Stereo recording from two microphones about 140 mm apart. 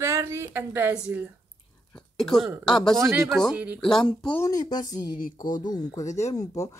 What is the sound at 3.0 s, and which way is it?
Speech, 20° right (ahead or behind).